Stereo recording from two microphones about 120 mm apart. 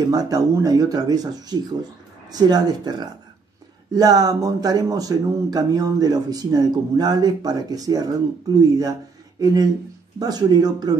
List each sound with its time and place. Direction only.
0.1 s speech: 30° right (ahead or behind)